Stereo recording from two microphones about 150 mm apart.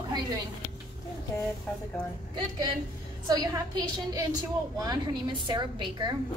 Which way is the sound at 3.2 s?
25° right (ahead or behind).